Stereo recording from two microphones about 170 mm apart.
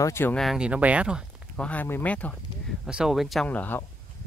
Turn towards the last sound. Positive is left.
turn(degrees=10)  # may be behind; listen again after turning